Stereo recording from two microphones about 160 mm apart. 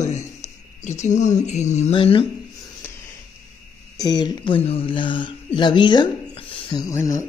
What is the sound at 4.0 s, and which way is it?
Speech, 25° left (ahead or behind).